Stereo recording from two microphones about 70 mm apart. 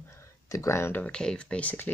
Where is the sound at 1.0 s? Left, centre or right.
Centre.